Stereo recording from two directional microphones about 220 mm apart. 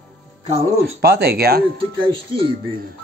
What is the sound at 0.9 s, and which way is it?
Speech, 45° right (ahead or behind).